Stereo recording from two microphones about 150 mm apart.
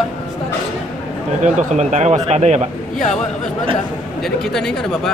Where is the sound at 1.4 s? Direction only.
50° right (ahead or behind).